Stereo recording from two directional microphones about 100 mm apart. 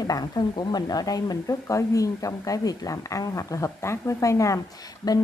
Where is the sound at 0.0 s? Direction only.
40° left (ahead or behind).